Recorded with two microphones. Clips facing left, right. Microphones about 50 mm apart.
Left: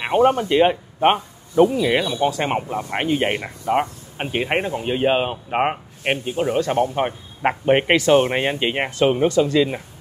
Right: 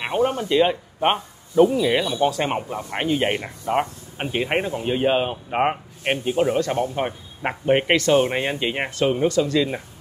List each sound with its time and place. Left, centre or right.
0.1 s speech: left
1.8 s speech: centre
2.1 s speech: centre
6.2 s a man's voice: centre
6.5 s speech: centre
9.0 s speech: left
9.4 s speech: left